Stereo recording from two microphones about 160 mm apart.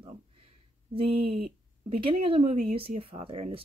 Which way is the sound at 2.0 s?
35° right (ahead or behind).